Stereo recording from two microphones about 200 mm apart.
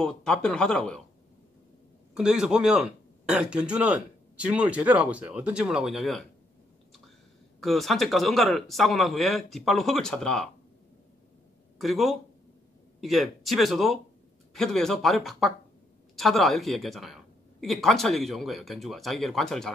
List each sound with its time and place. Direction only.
0.0 s speech: 5° left (ahead or behind)
2.1 s speech: 5° right (ahead or behind)
7.6 s speech: centre (ahead or behind)
11.8 s speech: centre (ahead or behind)